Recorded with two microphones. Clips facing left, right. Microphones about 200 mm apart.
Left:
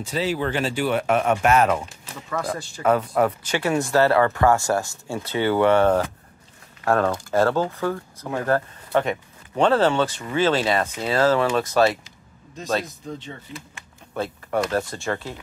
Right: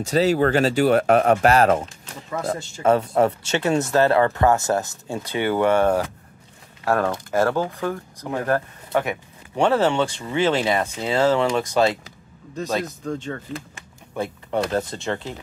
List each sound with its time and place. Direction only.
0.0 s speech: 40° right (ahead or behind)
2.2 s speech: 20° right (ahead or behind)
14.1 s a sound: 15° right (ahead or behind)
14.7 s speech: 20° right (ahead or behind)